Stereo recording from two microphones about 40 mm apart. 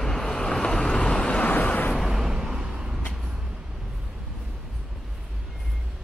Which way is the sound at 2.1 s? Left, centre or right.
Centre.